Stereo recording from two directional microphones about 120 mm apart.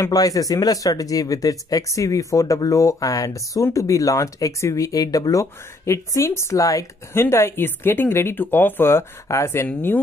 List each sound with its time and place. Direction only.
0.0 s speech: 30° left (ahead or behind)